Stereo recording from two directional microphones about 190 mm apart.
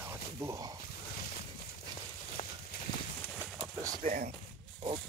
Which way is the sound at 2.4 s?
35° left (ahead or behind).